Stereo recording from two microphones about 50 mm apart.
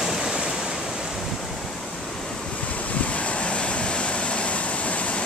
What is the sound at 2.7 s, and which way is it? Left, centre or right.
Waves, left.